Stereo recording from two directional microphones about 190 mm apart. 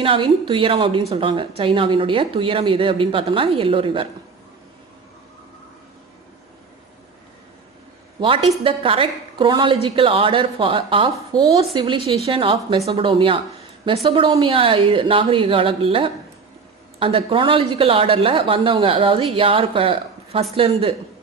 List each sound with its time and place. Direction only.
0.0 s a woman's voice: 25° right (ahead or behind)
8.2 s a woman's voice: 30° right (ahead or behind)